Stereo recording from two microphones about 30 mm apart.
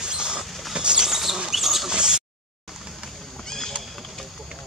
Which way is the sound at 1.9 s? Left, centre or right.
Right.